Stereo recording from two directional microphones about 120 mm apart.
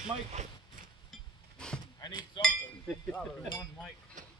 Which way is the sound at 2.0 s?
35° left (ahead or behind).